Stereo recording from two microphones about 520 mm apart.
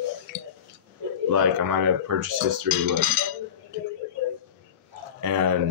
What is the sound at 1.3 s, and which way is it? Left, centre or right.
Speech, right.